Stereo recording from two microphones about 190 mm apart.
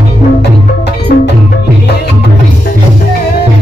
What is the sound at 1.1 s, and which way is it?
Music, 50° left (ahead or behind).